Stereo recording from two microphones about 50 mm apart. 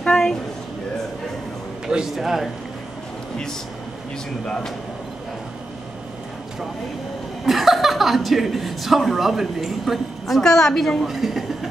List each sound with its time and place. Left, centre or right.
0.0 s a sound: centre
2.1 s speech: centre
4.5 s speech: centre
7.4 s speech: centre
11.1 s speech: centre